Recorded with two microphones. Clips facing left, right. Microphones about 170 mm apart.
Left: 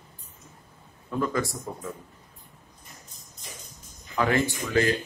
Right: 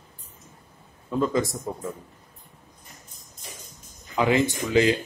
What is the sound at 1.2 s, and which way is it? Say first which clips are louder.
Speech: right 4 dB; 20° right (ahead or behind).